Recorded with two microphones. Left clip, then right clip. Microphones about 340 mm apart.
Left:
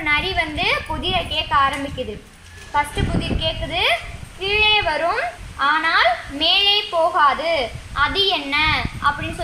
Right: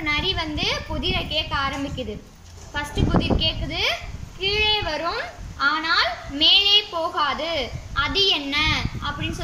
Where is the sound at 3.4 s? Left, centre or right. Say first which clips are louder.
Left 3 dB; centre.